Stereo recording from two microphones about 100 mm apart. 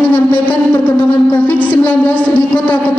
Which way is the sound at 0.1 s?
15° left (ahead or behind).